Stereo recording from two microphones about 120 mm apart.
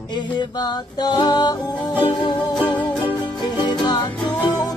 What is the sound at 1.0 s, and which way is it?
Music, 35° left (ahead or behind).